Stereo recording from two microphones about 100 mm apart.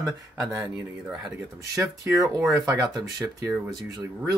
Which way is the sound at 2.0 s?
30° right (ahead or behind).